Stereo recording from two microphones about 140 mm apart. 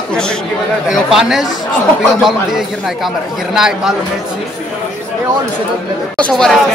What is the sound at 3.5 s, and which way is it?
Speech, 5° right (ahead or behind).